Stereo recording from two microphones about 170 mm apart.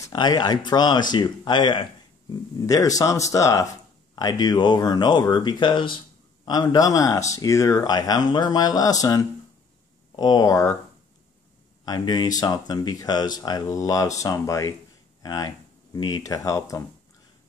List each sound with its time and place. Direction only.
0.0 s speech: 25° left (ahead or behind)
11.8 s speech: 25° left (ahead or behind)